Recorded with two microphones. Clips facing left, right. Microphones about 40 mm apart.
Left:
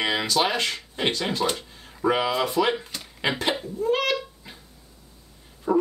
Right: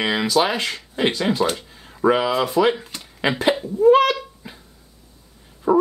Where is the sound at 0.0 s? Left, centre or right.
Centre.